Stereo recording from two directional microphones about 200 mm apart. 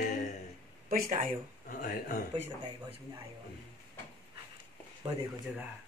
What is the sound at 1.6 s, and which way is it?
Speech, 45° left (ahead or behind).